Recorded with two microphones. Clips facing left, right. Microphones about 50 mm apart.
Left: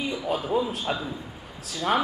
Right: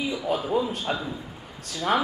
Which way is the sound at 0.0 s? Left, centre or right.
Centre.